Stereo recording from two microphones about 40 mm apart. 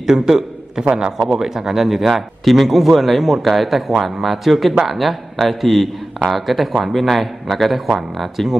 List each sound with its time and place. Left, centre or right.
0.0 s a man's voice: centre